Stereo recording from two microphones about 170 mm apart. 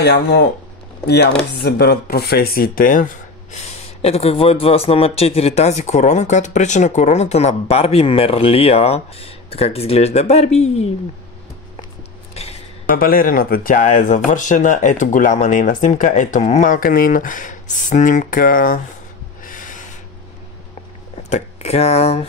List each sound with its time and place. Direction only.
0.0 s speech: 75° left (ahead or behind); by 3.1 s 50° left (ahead or behind)
3.5 s speech: 35° left (ahead or behind)
12.9 s speech: 60° left (ahead or behind)
19.4 s snort: 50° left (ahead or behind)
21.2 s speech: 40° left (ahead or behind)